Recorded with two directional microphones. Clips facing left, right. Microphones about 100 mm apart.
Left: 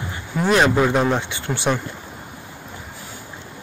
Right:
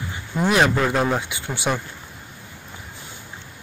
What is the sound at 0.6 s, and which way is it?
Speech, 10° left (ahead or behind).